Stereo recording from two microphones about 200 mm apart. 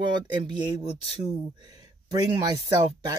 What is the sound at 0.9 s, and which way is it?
Speech, 30° left (ahead or behind).